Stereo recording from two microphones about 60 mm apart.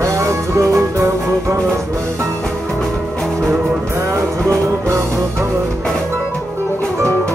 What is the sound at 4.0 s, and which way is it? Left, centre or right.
Music, right.